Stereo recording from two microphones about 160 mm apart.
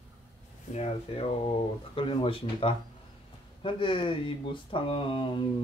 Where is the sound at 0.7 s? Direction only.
40° left (ahead or behind).